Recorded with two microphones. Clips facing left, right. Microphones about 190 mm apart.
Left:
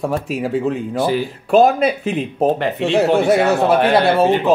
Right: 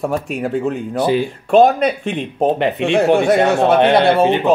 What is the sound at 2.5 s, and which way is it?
Speech, 20° right (ahead or behind).